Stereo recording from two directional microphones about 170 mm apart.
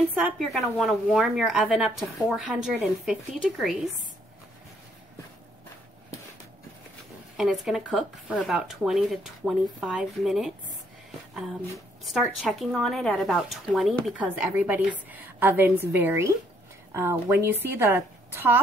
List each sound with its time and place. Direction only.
0.1 s speech: 5° right (ahead or behind)
7.3 s speech: 5° right (ahead or behind)
12.0 s a woman's voice: centre (ahead or behind)